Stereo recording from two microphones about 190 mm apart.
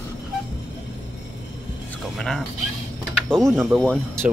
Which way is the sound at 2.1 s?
Centre (ahead or behind).